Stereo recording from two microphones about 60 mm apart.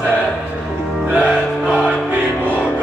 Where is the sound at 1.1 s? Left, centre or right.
Right.